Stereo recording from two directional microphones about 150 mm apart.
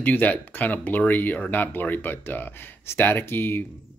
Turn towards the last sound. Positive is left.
turn(degrees=15)  # may be behind; listen again after turning